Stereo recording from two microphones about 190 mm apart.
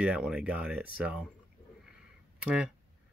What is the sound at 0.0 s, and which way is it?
Speech, 5° right (ahead or behind).